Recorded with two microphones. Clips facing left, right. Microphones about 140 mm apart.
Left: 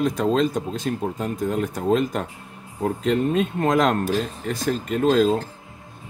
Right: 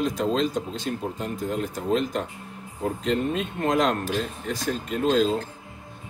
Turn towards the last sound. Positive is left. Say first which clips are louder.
# left 4 dB
turn(degrees=40)  # may be behind; listen again after turning